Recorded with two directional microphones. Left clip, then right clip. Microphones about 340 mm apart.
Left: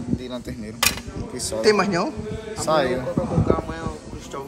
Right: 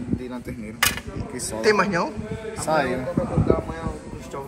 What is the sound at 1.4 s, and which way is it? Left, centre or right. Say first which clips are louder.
Speech: left 1 dB; centre.